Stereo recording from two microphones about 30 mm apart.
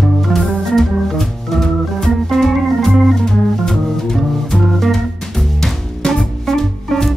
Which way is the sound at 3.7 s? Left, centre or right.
Centre.